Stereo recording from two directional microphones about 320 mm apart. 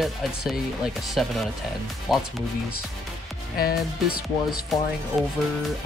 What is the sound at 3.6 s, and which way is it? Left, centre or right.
Speech, left.